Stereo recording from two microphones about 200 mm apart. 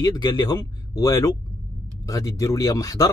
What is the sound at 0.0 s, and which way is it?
Speech, 20° left (ahead or behind).